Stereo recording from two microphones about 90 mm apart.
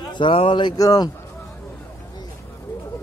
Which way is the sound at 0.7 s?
40° left (ahead or behind).